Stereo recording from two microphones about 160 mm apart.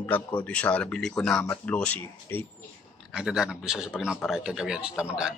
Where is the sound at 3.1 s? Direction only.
5° right (ahead or behind).